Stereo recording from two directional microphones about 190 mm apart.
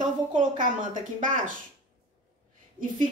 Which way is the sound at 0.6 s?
45° right (ahead or behind).